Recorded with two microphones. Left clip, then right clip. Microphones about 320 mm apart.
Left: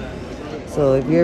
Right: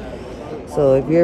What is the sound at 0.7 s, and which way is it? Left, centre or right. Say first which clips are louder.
Speech: right 2 dB; centre.